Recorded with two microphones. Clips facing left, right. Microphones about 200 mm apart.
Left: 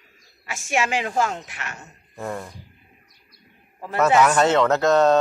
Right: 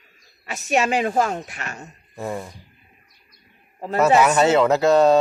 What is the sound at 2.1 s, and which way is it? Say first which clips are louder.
Speech: right 2 dB; 10° right (ahead or behind).